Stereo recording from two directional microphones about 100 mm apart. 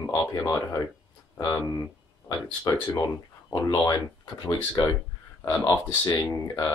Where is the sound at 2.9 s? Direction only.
35° left (ahead or behind).